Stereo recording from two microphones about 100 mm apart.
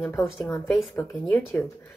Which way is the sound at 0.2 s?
Centre (ahead or behind).